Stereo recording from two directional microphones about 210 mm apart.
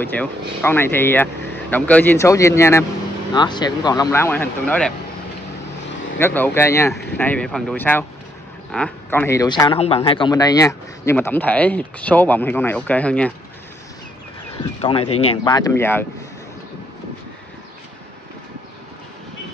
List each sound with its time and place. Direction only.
0.0 s speech: 10° left (ahead or behind)
6.1 s speech: 10° left (ahead or behind)
14.6 s speech: 25° left (ahead or behind)